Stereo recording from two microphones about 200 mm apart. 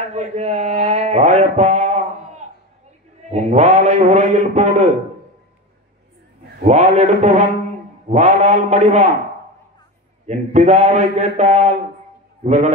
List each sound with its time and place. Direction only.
0.0 s a man's voice: 35° right (ahead or behind)
6.6 s a man's voice: 35° right (ahead or behind)
10.2 s a man's voice: 35° right (ahead or behind)